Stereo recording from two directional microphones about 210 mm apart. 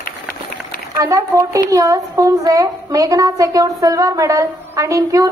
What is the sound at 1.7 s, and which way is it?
A woman's voice, 15° right (ahead or behind).